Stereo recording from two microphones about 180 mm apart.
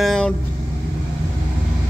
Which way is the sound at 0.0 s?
5° left (ahead or behind).